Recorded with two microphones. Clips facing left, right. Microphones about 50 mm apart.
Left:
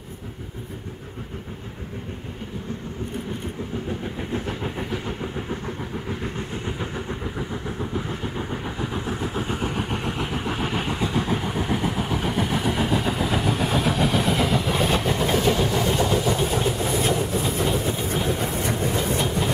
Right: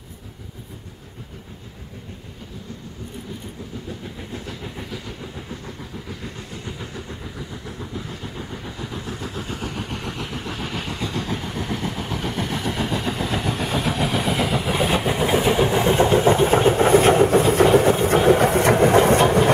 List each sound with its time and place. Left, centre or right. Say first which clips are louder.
4.0 s train: left 5 dB; left
6.0 s vehicle: left 5 dB; left; by 19.5 s right